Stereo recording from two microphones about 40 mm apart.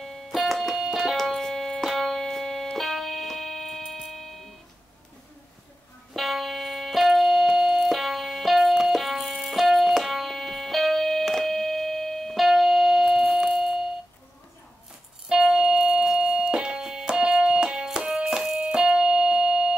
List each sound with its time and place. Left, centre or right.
0.0 s music: centre
3.8 s tick-tock: centre
6.1 s music: centre
12.4 s music: centre
15.2 s music: centre
18.8 s keyboard: centre